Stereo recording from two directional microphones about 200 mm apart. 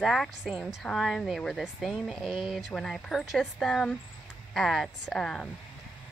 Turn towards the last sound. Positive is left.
turn(degrees=0)  # may be behind; listen again after turning